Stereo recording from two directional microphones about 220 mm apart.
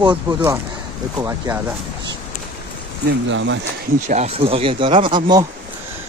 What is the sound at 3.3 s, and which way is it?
Speech, 55° right (ahead or behind).